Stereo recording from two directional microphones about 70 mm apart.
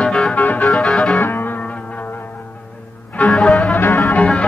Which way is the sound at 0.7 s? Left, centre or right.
Centre.